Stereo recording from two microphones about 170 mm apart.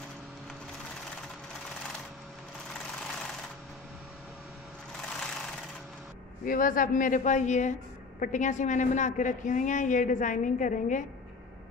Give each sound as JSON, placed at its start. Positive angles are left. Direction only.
{"t": 5.1, "sound": "vehicle", "side_deg": 5}
{"t": 6.4, "sound": "a woman's voice", "side_deg": 55}